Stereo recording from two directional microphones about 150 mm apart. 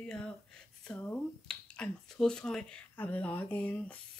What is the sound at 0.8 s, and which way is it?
Speech, 10° left (ahead or behind).